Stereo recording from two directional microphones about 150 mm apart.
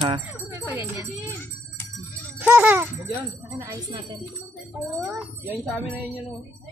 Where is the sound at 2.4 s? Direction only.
15° right (ahead or behind).